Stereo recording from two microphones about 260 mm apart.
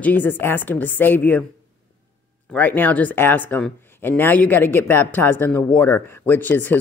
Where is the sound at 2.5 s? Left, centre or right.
Centre.